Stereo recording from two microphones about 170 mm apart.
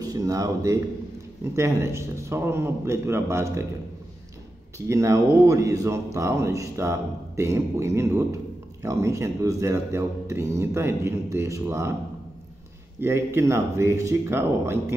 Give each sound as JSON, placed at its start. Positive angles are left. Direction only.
{"t": 0.0, "sound": "speech", "side_deg": -20}
{"t": 4.7, "sound": "speech", "side_deg": -15}
{"t": 13.0, "sound": "speech", "side_deg": -15}